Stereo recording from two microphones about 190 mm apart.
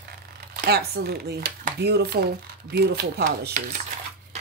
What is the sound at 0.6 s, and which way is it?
Speech, 55° right (ahead or behind).